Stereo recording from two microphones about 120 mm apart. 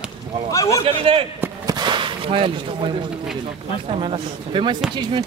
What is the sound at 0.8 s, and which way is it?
Speech, 50° right (ahead or behind).